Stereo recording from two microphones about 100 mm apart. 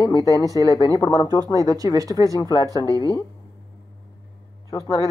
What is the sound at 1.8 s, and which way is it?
Speech, 55° left (ahead or behind).